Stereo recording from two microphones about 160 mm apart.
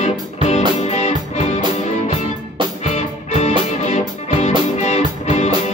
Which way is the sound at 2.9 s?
45° left (ahead or behind).